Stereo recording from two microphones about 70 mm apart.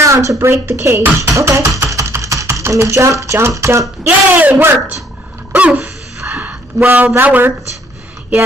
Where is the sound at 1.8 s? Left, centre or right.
Right.